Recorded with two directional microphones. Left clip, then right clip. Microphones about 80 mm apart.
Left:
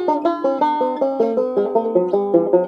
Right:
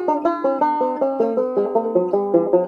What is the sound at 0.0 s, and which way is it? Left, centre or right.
Banjo, left.